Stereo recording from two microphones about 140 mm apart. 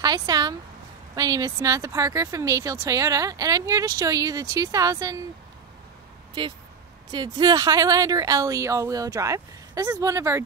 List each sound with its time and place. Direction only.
0.0 s speech: 30° right (ahead or behind)
6.4 s speech: 35° right (ahead or behind)